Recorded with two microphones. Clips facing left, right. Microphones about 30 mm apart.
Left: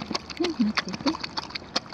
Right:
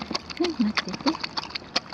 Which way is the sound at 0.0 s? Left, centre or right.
Centre.